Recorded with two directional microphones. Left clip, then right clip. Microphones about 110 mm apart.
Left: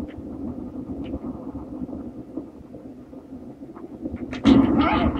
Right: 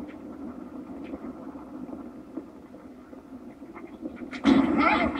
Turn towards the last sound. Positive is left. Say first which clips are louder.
# left 2 dB
turn(degrees=-20)  # may be behind; listen again after turning